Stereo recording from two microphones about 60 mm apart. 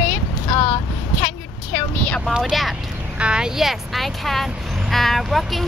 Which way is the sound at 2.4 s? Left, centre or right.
Centre.